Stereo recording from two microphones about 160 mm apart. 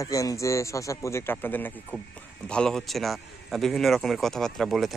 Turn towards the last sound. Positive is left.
turn(degrees=0)  # may be behind; listen again after turning